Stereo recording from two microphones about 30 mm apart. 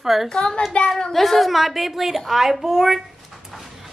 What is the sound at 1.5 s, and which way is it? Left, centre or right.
A woman's voice, centre.